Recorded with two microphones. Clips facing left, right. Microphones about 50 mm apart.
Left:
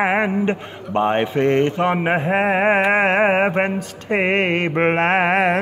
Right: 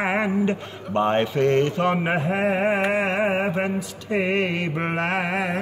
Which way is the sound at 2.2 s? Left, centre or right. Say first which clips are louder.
Left 5 dB; left.